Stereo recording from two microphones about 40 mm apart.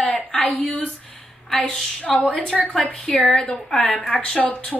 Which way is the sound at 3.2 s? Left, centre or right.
Left.